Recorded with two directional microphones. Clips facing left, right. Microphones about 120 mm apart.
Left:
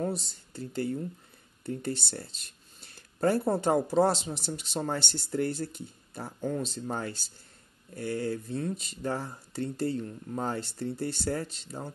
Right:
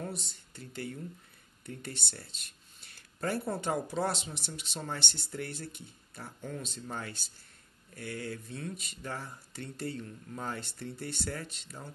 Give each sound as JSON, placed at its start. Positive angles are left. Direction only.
{"t": 0.0, "sound": "speech", "side_deg": 35}